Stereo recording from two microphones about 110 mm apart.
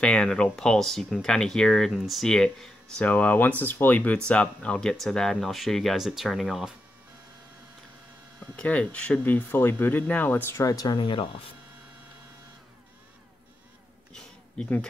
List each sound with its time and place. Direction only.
0.0 s speech: 10° left (ahead or behind)
8.5 s speech: 10° left (ahead or behind); by 11.0 s 35° left (ahead or behind)
11.0 s speech: 50° left (ahead or behind)
14.1 s a sound: 10° left (ahead or behind)